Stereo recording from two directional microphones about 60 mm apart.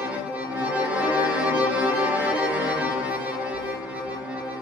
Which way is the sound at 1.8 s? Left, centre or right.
Right.